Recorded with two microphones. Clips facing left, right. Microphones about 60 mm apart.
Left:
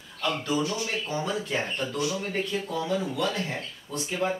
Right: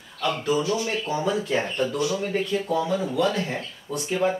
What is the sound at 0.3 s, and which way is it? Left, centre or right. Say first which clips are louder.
Speech: right 4 dB; centre.